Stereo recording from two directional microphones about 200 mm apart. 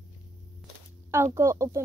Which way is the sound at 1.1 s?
15° right (ahead or behind).